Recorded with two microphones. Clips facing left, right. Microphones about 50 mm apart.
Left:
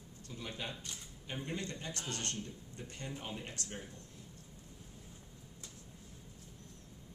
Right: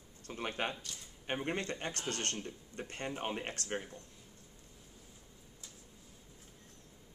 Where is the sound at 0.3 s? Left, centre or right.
Right.